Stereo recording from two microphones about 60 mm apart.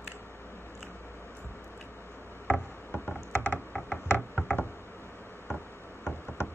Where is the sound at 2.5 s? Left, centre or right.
Left.